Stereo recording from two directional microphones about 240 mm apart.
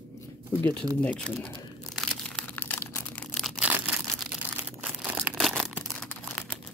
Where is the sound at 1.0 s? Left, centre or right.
Centre.